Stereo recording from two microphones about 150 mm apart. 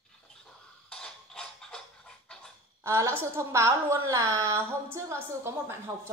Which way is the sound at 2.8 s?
20° right (ahead or behind).